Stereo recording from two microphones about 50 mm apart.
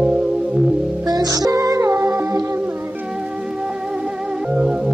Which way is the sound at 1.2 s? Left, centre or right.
Right.